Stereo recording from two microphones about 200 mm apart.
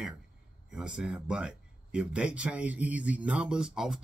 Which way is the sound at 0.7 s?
5° right (ahead or behind).